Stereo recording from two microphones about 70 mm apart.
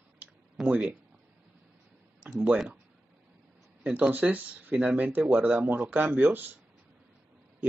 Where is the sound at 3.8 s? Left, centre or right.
Right.